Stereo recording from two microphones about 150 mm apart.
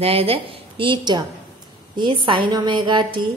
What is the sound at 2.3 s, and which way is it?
Speech, 30° right (ahead or behind).